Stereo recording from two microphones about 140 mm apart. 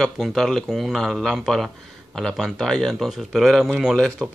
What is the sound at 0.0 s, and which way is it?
A man's voice, centre (ahead or behind).